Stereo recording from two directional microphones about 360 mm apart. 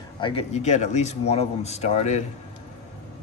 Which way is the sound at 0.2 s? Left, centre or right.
Centre.